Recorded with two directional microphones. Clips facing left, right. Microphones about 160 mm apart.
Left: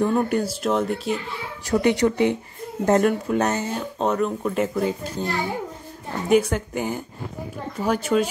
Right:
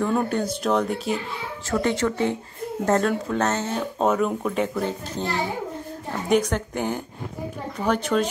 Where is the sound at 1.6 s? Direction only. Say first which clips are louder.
Left 4 dB; 15° left (ahead or behind).